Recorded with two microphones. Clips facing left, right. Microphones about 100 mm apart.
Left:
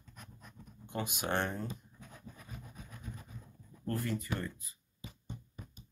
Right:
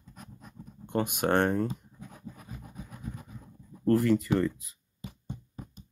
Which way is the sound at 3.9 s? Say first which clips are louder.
Right 13 dB; 85° right.